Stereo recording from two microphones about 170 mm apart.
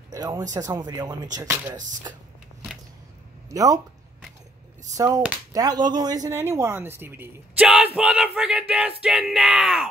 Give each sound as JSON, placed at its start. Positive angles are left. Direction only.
{"t": 0.1, "sound": "speech", "side_deg": -20}
{"t": 3.4, "sound": "speech", "side_deg": -20}
{"t": 4.9, "sound": "speech", "side_deg": -20}